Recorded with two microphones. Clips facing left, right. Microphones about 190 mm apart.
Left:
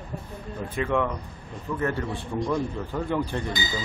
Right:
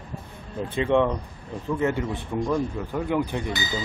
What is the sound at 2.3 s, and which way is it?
Speech, 10° right (ahead or behind).